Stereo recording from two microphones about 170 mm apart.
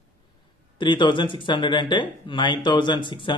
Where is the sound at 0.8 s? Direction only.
25° left (ahead or behind).